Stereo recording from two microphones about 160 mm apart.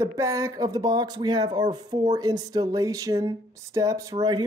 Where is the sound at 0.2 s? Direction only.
20° right (ahead or behind).